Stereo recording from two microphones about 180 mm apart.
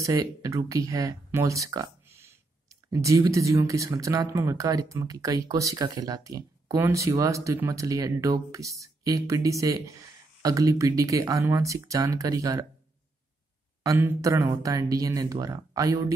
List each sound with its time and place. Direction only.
0.0 s speech: 20° right (ahead or behind)
13.8 s speech: 15° right (ahead or behind)